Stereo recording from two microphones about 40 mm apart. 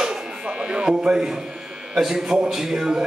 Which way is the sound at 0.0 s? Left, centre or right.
Centre.